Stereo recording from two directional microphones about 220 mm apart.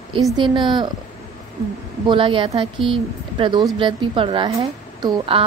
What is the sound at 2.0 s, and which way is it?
A woman's voice, 25° right (ahead or behind).